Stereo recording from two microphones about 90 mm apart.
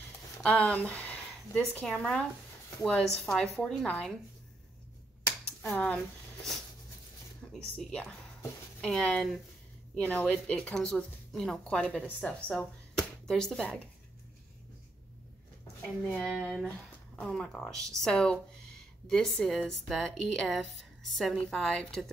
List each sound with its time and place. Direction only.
0.4 s speech: 15° left (ahead or behind)
1.9 s a woman's voice: 5° left (ahead or behind)
5.8 s speech: 10° left (ahead or behind)
7.5 s a woman's voice: 10° left (ahead or behind)
16.1 s a woman's voice: 10° left (ahead or behind)